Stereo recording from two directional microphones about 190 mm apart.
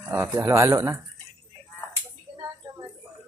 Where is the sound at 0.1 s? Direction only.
15° right (ahead or behind).